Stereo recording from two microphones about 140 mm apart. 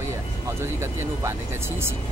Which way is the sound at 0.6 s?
20° right (ahead or behind).